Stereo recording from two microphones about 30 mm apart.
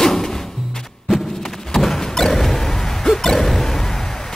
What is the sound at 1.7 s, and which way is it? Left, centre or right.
Door, centre.